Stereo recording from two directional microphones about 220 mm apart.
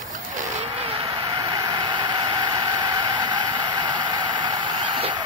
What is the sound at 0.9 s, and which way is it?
Vehicle, 25° right (ahead or behind).